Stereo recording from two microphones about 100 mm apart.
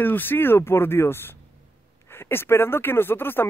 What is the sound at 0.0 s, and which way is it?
Speech, 20° left (ahead or behind).